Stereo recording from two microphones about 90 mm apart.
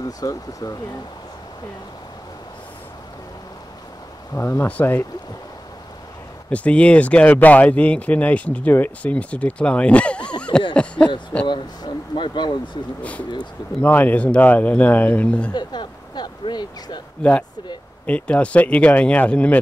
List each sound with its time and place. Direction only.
0.0 s speech: 40° left (ahead or behind)
4.4 s speech: 30° left (ahead or behind)
4.6 s speech: 15° left (ahead or behind)
6.5 s speech: 15° left (ahead or behind)
11.4 s speech: 60° left (ahead or behind)
13.7 s speech: 20° left (ahead or behind)
15.5 s speech: 50° left (ahead or behind)
17.2 s speech: 15° left (ahead or behind)